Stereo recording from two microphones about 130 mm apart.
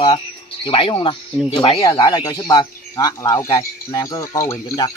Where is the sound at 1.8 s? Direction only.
25° left (ahead or behind).